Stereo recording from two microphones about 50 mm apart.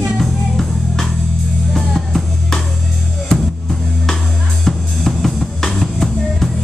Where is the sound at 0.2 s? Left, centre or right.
Centre.